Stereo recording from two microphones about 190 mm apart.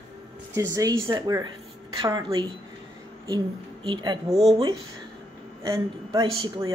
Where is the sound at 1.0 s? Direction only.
15° right (ahead or behind).